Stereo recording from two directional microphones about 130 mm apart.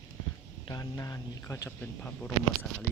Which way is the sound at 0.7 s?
30° left (ahead or behind).